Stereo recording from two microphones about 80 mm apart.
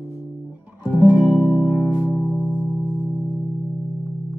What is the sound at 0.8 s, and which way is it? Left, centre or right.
Music, right.